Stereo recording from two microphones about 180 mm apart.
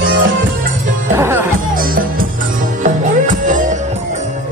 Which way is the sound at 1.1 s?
15° right (ahead or behind).